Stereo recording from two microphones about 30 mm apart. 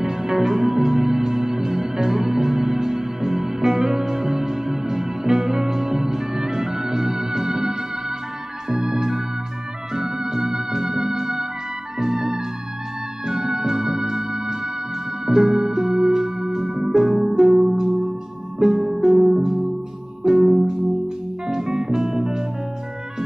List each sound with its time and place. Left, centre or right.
0.0 s organ: centre
9.9 s music: centre
12.0 s organ: centre
15.2 s music: centre